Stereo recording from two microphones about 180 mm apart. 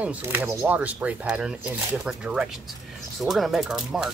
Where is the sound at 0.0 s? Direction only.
10° right (ahead or behind).